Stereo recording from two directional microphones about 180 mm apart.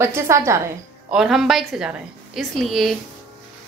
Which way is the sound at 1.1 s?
Centre (ahead or behind).